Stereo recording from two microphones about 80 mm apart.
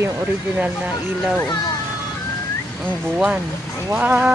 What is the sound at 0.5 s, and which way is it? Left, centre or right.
Speech, centre.